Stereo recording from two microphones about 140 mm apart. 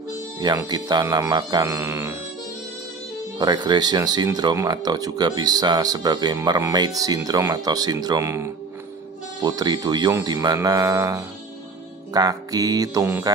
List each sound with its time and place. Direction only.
0.7 s speech: 30° right (ahead or behind)
3.3 s speech: 30° right (ahead or behind)